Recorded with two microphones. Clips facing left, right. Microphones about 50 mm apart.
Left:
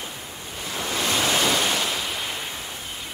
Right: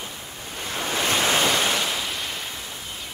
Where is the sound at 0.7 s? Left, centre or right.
Right.